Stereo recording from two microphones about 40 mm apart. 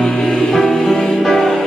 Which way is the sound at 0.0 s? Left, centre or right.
Centre.